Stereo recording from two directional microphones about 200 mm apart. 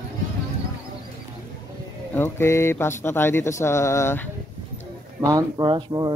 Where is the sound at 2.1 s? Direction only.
10° left (ahead or behind).